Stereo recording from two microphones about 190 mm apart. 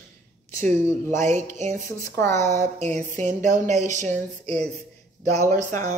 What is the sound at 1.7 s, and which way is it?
Speech, 15° left (ahead or behind).